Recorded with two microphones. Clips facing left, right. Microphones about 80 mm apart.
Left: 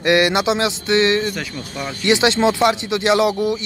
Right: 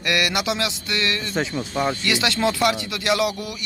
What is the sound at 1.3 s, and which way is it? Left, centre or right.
Speech, right.